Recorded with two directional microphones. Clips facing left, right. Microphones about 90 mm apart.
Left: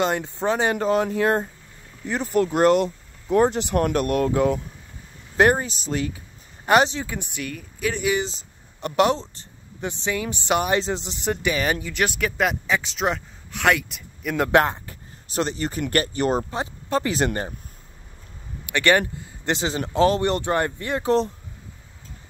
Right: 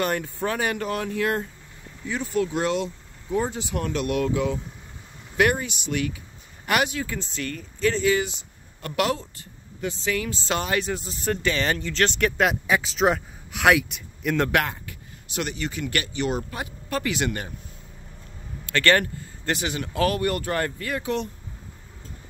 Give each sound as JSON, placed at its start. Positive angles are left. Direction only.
{"t": 0.0, "sound": "speech", "side_deg": 20}
{"t": 2.1, "sound": "speech", "side_deg": 50}
{"t": 5.4, "sound": "speech", "side_deg": 35}
{"t": 14.5, "sound": "speech", "side_deg": 30}
{"t": 16.4, "sound": "speech", "side_deg": 25}
{"t": 18.7, "sound": "speech", "side_deg": 15}
{"t": 21.0, "sound": "speech", "side_deg": 35}